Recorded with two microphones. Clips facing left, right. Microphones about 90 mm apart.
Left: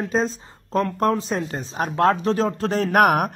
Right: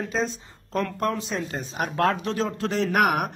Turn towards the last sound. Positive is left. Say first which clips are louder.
# left 5 dB
turn(degrees=45)  # may be behind; listen again after turning